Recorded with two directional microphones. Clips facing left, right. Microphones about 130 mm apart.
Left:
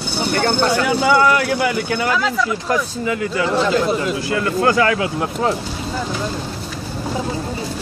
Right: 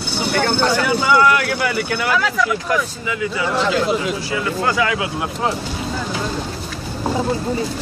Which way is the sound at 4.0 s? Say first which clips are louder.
Left 2 dB; 50° left (ahead or behind).